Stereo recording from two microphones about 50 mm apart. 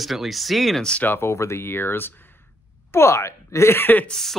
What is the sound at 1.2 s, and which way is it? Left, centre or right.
Speech, left.